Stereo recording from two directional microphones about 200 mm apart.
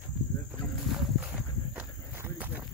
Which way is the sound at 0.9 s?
5° right (ahead or behind).